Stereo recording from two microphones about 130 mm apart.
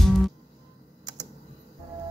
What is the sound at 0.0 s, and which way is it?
Music, centre (ahead or behind).